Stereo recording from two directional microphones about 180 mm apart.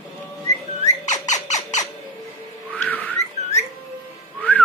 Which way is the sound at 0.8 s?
40° left (ahead or behind).